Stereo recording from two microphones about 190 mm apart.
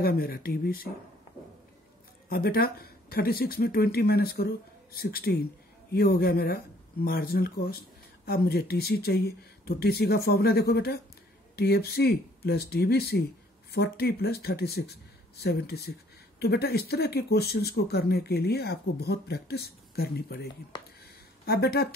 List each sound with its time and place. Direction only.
0.0 s speech: 50° left (ahead or behind)
2.2 s speech: 55° left (ahead or behind)
21.5 s speech: 55° left (ahead or behind)